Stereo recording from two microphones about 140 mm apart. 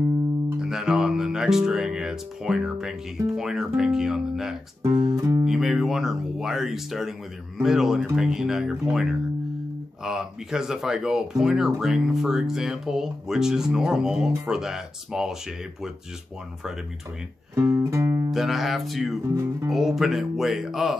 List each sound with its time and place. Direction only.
0.6 s speech: 5° right (ahead or behind)
4.8 s speech: 25° right (ahead or behind)
5.4 s speech: centre (ahead or behind)
17.6 s music: 20° right (ahead or behind)
18.3 s speech: centre (ahead or behind)
19.3 s music: 20° right (ahead or behind)
19.7 s speech: centre (ahead or behind)